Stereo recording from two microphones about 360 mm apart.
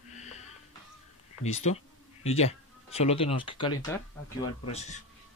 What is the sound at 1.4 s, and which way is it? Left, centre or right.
Speech, centre.